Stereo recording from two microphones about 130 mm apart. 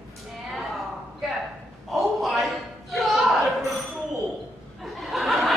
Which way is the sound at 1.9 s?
Centre (ahead or behind).